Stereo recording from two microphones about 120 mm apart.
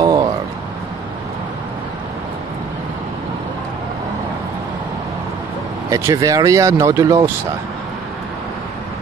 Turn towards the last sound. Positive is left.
turn(degrees=-25)  # may be behind; listen again after turning